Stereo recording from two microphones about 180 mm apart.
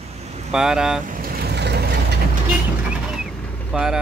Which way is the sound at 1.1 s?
55° right (ahead or behind).